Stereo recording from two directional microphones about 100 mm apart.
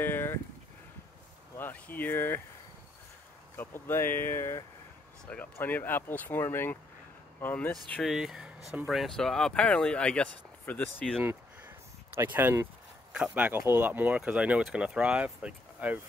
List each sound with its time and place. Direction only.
0.0 s a sound: 20° left (ahead or behind)
1.6 s speech: 20° left (ahead or behind)
3.5 s speech: 20° left (ahead or behind)
5.3 s speech: 15° left (ahead or behind)
8.0 s speech: 5° right (ahead or behind); by 11.1 s 15° left (ahead or behind)
11.1 s a sound: 20° right (ahead or behind)
13.1 s speech: 10° right (ahead or behind)